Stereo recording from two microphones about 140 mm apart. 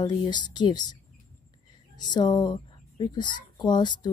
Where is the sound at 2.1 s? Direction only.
30° left (ahead or behind).